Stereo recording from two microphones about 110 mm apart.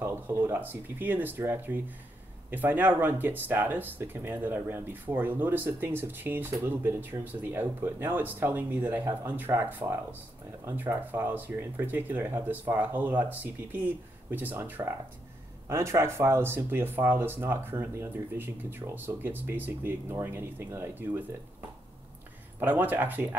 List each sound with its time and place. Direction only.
0.0 s speech: 25° right (ahead or behind)
22.6 s speech: 15° right (ahead or behind)